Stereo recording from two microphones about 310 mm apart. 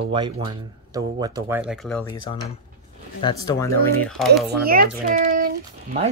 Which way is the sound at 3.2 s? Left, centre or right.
Centre.